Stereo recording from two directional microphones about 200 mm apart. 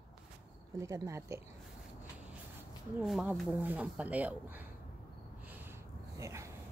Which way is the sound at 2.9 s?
5° right (ahead or behind).